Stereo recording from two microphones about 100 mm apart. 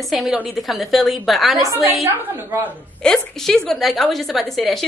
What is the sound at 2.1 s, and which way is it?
Speech, 20° right (ahead or behind).